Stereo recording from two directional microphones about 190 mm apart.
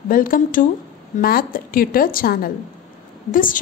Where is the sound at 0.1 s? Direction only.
45° left (ahead or behind).